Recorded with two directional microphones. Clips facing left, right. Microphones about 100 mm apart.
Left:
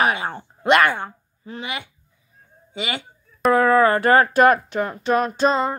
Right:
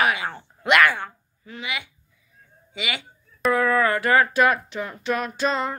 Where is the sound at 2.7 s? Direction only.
35° left (ahead or behind).